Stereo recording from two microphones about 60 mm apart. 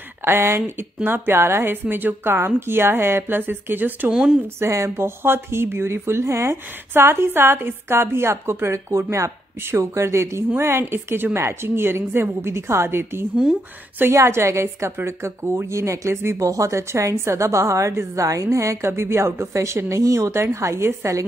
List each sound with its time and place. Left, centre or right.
0.2 s a woman's voice: right
4.1 s a woman's voice: centre
4.6 s speech: right
16.3 s a woman's voice: right
20.0 s a woman's voice: right